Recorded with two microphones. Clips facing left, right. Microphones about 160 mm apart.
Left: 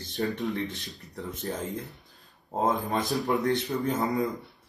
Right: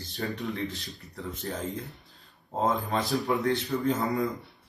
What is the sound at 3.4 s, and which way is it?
Speech, 20° left (ahead or behind).